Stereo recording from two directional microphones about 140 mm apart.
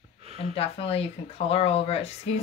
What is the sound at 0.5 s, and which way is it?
Speech, 45° left (ahead or behind).